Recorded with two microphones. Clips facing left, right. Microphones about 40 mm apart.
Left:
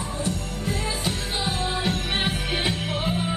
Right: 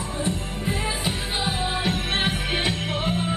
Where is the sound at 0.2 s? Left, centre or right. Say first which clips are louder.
Right 3 dB; right.